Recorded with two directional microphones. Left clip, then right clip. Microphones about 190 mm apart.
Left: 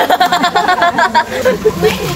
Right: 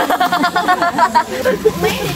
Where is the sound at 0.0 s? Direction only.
15° left (ahead or behind).